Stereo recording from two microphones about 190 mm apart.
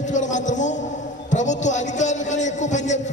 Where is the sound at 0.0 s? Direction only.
40° left (ahead or behind).